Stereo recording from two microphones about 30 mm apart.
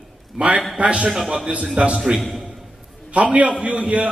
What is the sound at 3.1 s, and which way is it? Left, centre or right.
Speech, right.